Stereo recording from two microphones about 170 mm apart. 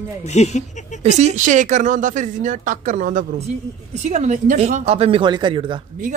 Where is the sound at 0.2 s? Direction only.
40° left (ahead or behind).